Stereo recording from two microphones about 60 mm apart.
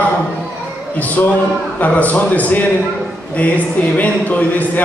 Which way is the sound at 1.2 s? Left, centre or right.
Left.